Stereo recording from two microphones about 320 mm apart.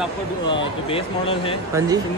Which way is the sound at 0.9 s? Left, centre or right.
Centre.